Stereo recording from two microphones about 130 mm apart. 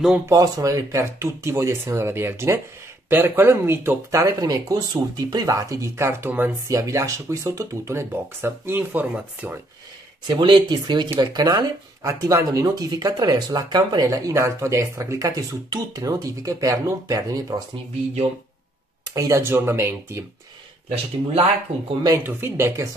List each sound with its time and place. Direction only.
0.3 s speech: 25° right (ahead or behind)
10.2 s speech: 35° right (ahead or behind)
19.1 s speech: 25° right (ahead or behind)
20.9 s speech: 45° right (ahead or behind)
22.2 s speech: 20° right (ahead or behind)